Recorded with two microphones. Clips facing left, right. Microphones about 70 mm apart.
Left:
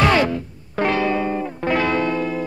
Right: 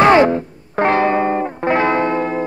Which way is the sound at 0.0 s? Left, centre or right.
Right.